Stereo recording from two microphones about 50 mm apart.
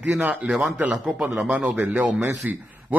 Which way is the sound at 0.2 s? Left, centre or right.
Right.